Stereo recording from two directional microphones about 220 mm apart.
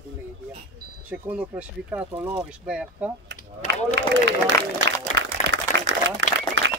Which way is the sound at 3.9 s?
55° right (ahead or behind).